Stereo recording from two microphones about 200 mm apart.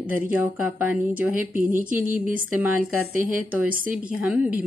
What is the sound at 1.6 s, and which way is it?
Speech, 45° right (ahead or behind).